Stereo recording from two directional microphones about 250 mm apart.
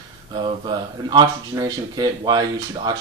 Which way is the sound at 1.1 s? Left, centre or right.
Centre.